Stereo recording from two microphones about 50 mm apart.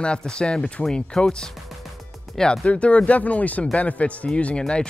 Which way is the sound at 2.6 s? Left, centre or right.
Left.